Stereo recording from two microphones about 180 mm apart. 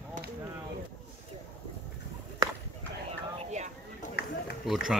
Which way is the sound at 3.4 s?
40° right (ahead or behind).